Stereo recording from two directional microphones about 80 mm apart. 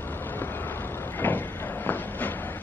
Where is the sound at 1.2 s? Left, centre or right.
Left.